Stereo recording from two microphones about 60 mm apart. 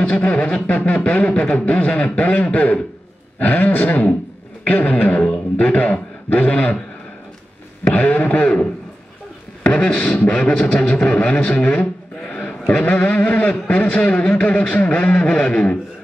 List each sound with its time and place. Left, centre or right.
0.0 s a man's voice: centre
5.1 s a man's voice: centre
5.6 s a man's voice: left
7.9 s a man's voice: left
9.6 s beatboxing: centre
10.3 s a man's voice: centre
11.4 s a sound: centre
12.8 s a man's voice: left